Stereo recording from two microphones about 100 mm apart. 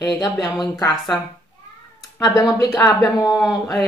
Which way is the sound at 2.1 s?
30° left (ahead or behind).